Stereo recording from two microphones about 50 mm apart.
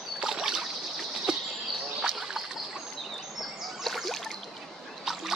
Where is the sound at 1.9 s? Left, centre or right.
Centre.